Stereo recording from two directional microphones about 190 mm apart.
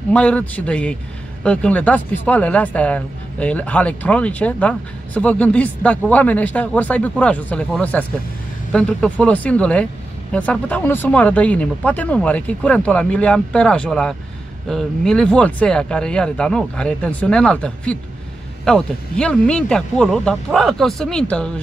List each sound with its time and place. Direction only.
0.1 s speech: 5° left (ahead or behind)